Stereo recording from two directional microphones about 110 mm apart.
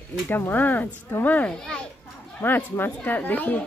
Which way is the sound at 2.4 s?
20° left (ahead or behind).